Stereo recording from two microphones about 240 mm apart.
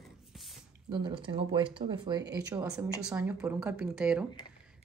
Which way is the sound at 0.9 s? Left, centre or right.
Centre.